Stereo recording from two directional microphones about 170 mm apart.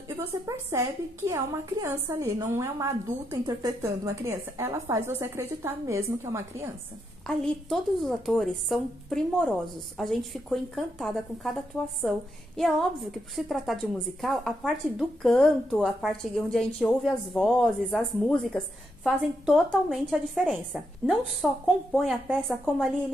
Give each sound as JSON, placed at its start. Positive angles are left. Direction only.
{"t": 0.1, "sound": "a woman's voice", "side_deg": -15}
{"t": 7.2, "sound": "a woman's voice", "side_deg": 0}